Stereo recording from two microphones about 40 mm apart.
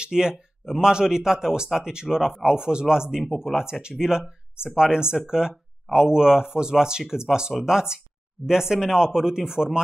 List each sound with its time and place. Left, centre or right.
0.0 s speech: centre